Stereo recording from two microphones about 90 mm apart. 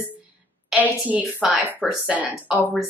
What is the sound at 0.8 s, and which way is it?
A woman's voice, 15° right (ahead or behind).